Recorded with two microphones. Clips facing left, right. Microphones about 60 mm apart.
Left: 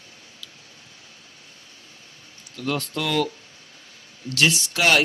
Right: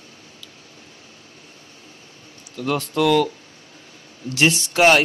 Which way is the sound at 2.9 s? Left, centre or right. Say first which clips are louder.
Right 12 dB; right.